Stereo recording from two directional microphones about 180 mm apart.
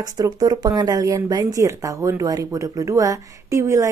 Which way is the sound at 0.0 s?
20° right (ahead or behind).